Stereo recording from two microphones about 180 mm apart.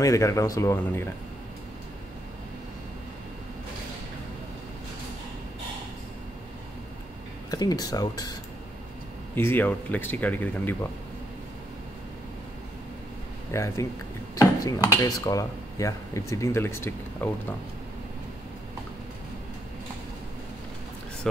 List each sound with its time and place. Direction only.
0.0 s speech: 15° left (ahead or behind)
7.5 s speech: 20° left (ahead or behind)
9.3 s speech: 10° left (ahead or behind)
13.5 s speech: 15° left (ahead or behind)